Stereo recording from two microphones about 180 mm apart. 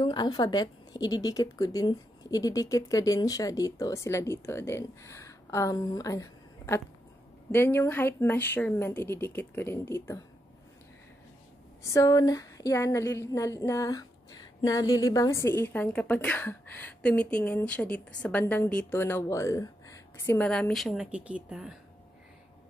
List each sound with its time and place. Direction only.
0.0 s a woman's voice: 25° left (ahead or behind)
11.8 s a woman's voice: 20° left (ahead or behind); by 21.7 s 5° right (ahead or behind)